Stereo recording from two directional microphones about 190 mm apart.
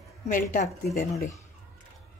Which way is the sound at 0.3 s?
45° left (ahead or behind).